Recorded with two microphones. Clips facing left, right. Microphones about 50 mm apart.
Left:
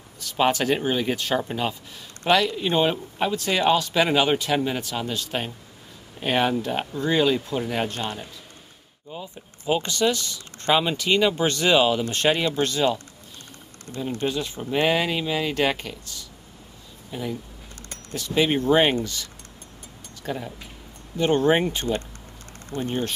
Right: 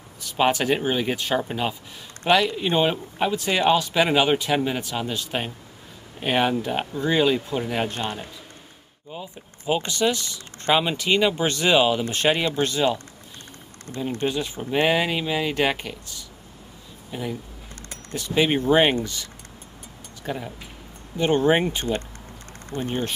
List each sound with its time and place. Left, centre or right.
0.2 s speech: centre
7.9 s speech: centre
14.2 s speech: centre
20.2 s speech: centre
22.8 s speech: right